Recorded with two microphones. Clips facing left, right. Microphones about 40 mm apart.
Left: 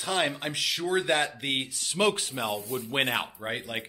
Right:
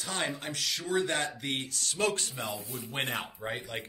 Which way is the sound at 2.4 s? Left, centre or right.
Left.